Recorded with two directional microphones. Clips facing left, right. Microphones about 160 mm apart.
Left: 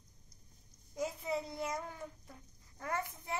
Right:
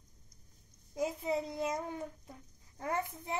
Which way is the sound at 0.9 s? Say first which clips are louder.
Right 3 dB; 20° right (ahead or behind).